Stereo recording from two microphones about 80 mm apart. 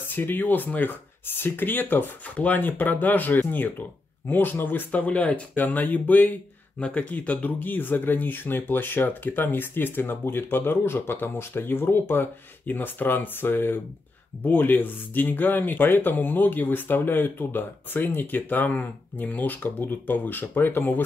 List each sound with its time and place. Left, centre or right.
0.1 s speech: left